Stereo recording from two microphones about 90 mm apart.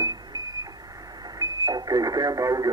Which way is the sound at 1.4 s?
45° right (ahead or behind).